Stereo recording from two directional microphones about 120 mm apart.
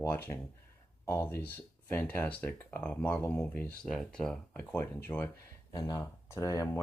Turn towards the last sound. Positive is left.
turn(degrees=30)  # may be behind; listen again after turning